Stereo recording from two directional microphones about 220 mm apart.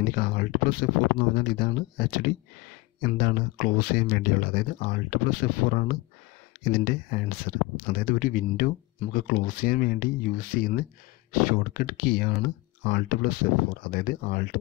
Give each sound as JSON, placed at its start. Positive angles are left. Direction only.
{"t": 0.0, "sound": "speech", "side_deg": 40}